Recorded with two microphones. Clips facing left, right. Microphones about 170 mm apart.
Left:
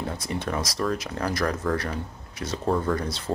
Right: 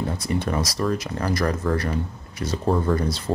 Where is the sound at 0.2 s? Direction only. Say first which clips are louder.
Right 4 dB; centre (ahead or behind).